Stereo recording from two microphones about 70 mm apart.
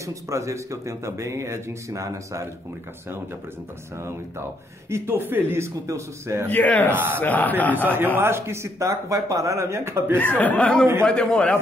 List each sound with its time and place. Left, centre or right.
0.0 s speech: right
4.8 s speech: right
6.5 s speech: left
7.7 s a man's voice: right
10.1 s a man's voice: left